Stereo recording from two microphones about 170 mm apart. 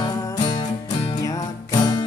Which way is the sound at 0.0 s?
25° left (ahead or behind).